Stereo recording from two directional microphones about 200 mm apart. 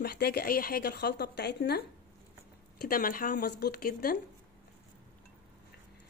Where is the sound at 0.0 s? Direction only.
50° left (ahead or behind).